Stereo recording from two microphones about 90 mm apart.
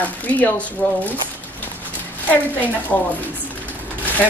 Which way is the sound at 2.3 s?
20° left (ahead or behind).